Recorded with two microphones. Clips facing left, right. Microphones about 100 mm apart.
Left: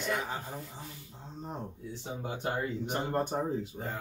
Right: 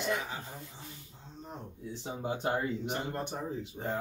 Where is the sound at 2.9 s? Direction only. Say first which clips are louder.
Left 5 dB; 40° left (ahead or behind).